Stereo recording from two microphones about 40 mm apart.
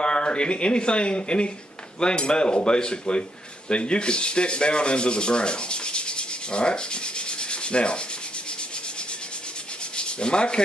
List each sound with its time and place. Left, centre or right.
0.0 s speech: left
9.9 s sanding: left